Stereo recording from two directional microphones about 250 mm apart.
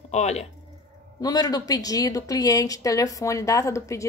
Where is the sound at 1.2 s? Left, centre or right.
Centre.